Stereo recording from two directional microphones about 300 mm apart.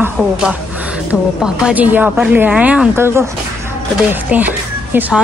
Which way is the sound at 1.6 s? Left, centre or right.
Centre.